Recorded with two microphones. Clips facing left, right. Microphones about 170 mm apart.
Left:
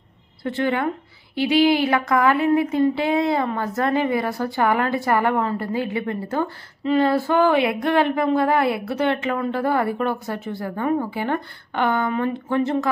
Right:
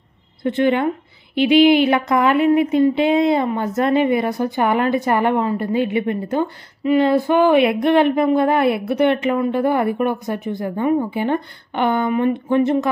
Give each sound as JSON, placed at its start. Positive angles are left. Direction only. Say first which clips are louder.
{"t": 0.4, "sound": "speech", "louder": "right 5 dB", "side_deg": -20}